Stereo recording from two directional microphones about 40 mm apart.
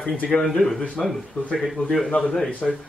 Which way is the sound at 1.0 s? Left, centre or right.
Left.